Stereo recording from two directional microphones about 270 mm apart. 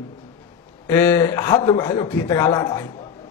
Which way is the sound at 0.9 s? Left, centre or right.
Centre.